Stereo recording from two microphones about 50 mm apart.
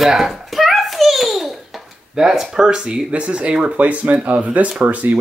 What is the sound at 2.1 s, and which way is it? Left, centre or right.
Speech, centre.